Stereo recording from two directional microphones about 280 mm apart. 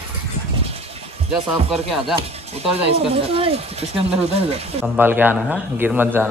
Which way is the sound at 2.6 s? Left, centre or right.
Centre.